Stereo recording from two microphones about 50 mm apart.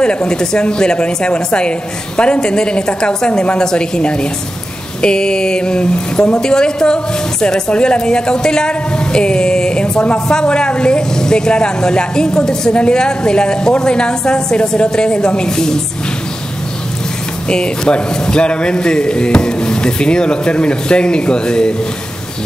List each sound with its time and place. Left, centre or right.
0.0 s a woman's voice: centre
17.5 s a woman's voice: centre